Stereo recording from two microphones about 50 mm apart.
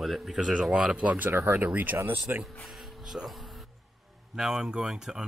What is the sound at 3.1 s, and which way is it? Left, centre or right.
Speech, centre.